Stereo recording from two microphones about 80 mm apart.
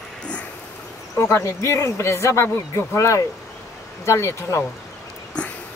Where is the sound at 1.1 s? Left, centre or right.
Left.